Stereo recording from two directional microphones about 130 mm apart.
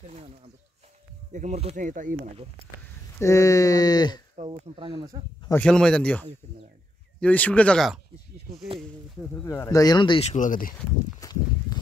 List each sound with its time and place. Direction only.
1.3 s speech: 65° right (ahead or behind); by 2.1 s 80° right
3.2 s speech: 25° left (ahead or behind)
4.5 s speech: 40° right (ahead or behind)
5.5 s speech: 10° left (ahead or behind)
9.5 s speech: 25° left (ahead or behind)
10.2 s speech: 75° left (ahead or behind)
11.1 s speech: 30° left (ahead or behind)